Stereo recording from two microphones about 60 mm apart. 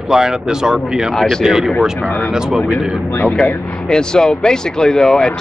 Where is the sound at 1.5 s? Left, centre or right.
Centre.